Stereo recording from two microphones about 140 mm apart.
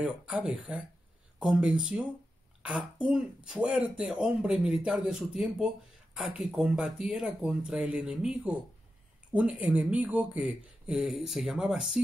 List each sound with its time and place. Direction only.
0.0 s speech: 10° right (ahead or behind)